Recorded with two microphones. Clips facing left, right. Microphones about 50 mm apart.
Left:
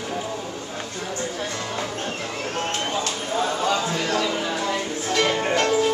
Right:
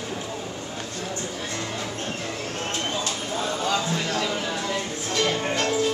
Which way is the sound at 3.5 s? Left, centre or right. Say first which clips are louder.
Left 2 dB; left.